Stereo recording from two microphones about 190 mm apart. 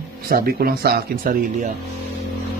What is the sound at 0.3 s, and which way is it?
Speech, 50° right (ahead or behind).